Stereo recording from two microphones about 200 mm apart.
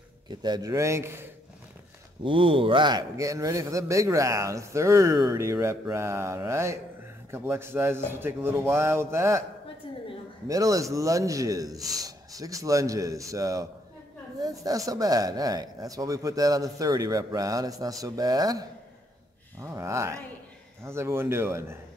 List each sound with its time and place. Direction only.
0.3 s a man's voice: 20° right (ahead or behind)
2.2 s a man's voice: 25° right (ahead or behind)
9.8 s a sound: 25° left (ahead or behind)
10.5 s a man's voice: 15° right (ahead or behind)